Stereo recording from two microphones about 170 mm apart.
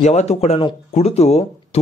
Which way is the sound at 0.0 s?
40° left (ahead or behind).